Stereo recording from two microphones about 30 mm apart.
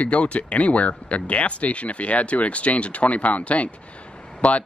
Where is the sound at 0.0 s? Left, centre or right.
Left.